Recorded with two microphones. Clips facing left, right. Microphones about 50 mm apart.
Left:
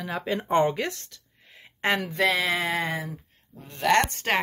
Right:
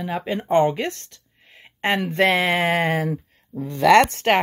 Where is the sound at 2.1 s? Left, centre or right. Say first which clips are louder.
Right 5 dB; right.